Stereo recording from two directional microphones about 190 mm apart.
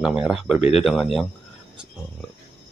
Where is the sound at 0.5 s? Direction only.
35° left (ahead or behind).